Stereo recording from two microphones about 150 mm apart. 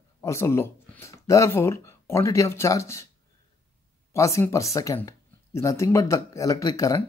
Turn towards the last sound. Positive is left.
turn(degrees=20)  # may be behind; listen again after turning